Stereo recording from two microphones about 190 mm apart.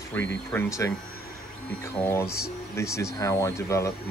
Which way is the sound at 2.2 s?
55° left (ahead or behind).